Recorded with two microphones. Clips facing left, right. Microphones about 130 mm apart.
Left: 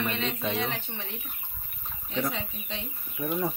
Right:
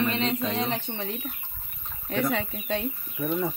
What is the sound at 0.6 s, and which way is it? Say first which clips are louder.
Speech: right 3 dB; 35° right (ahead or behind).